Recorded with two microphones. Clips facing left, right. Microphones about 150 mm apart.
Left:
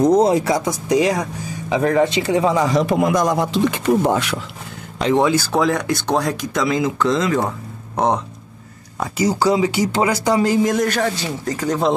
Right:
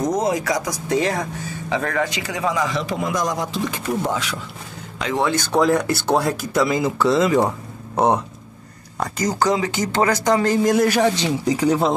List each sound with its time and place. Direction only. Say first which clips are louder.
0.0 s speech: left 7 dB; 30° left (ahead or behind)
0.8 s speech: left 3 dB; 15° left (ahead or behind); by 2.9 s 35° left (ahead or behind)
2.9 s speech: left 6 dB; 60° left (ahead or behind)
5.1 s speech: left 5 dB; 15° left (ahead or behind)
5.5 s speech: right 1 dB; centre (ahead or behind)
9.0 s speech: left 3 dB; 10° left (ahead or behind)
10.7 s speech: right 2 dB; 5° right (ahead or behind)